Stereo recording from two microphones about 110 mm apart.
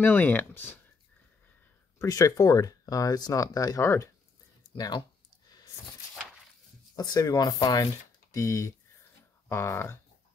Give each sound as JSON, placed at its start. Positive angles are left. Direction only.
{"t": 0.0, "sound": "speech", "side_deg": 15}
{"t": 2.0, "sound": "speech", "side_deg": 30}
{"t": 4.7, "sound": "speech", "side_deg": 40}
{"t": 7.0, "sound": "speech", "side_deg": 35}